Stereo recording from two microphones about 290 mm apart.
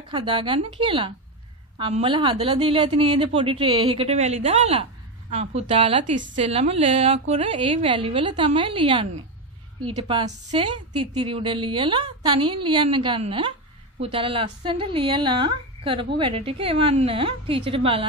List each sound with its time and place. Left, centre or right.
0.1 s a woman's voice: centre